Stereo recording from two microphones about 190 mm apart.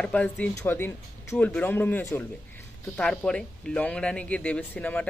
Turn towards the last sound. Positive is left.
turn(degrees=10)  # may be behind; listen again after turning